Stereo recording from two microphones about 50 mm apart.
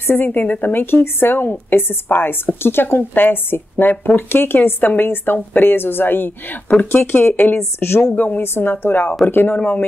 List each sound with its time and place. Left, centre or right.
0.0 s a woman's voice: left
6.7 s speech: centre
7.1 s a woman's voice: left
8.1 s a woman's voice: left